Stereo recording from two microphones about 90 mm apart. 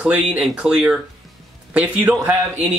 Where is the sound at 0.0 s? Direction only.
10° right (ahead or behind).